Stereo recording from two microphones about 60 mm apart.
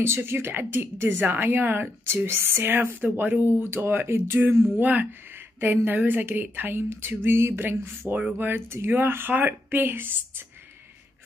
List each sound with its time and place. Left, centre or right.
0.0 s speech: right